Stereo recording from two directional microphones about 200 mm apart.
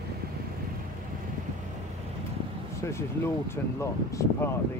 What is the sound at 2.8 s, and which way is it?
Speech, 15° left (ahead or behind).